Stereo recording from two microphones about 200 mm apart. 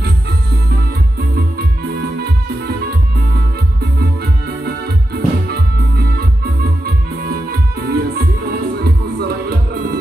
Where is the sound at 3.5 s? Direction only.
55° right (ahead or behind).